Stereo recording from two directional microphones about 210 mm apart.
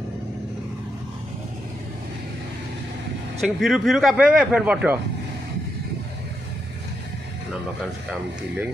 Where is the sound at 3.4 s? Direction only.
Centre (ahead or behind).